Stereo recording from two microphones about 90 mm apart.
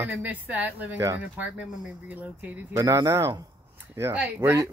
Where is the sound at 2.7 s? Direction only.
40° right (ahead or behind).